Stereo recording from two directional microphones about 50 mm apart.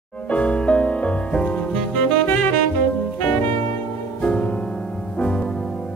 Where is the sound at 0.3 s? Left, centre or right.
Left.